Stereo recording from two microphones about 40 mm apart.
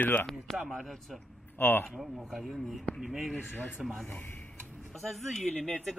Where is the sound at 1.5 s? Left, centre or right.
Left.